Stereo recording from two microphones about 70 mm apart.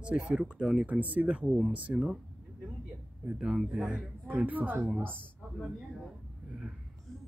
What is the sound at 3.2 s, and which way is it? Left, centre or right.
Speech, centre.